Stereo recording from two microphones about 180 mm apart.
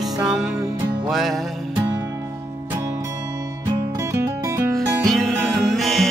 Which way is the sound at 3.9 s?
15° right (ahead or behind).